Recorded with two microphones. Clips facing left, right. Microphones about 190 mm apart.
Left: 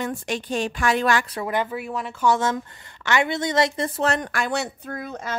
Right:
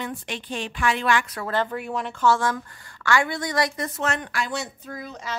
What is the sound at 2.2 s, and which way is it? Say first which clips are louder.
Speech: left 1 dB; 20° left (ahead or behind).